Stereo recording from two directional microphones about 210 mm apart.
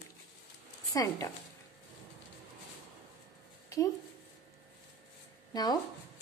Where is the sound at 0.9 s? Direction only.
15° left (ahead or behind).